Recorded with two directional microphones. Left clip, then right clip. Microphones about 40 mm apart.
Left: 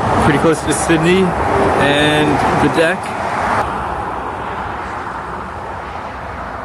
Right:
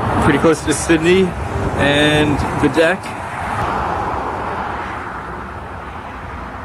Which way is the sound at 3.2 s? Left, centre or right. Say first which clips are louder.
Left 6 dB; centre.